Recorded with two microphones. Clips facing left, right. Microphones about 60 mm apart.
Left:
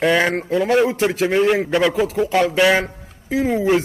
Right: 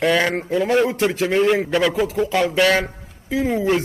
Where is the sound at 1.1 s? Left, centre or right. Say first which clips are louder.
Left 1 dB; centre.